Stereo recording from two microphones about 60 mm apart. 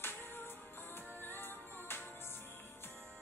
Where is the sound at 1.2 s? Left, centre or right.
Left.